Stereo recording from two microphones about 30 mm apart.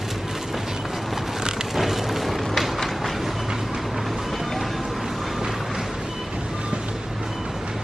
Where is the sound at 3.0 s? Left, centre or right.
Centre.